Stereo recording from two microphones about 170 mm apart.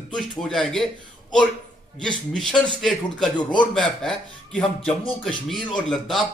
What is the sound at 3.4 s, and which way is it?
Speech, 25° left (ahead or behind).